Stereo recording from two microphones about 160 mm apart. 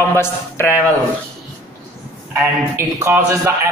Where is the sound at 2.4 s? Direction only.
15° right (ahead or behind).